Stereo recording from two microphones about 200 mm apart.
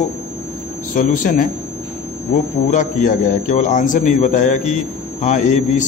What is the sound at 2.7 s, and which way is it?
A man's voice, 40° left (ahead or behind).